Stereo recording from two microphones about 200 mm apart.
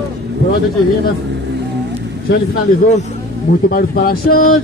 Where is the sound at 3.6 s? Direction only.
45° left (ahead or behind).